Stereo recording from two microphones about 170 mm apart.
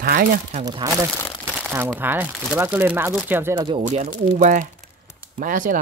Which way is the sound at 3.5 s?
30° right (ahead or behind).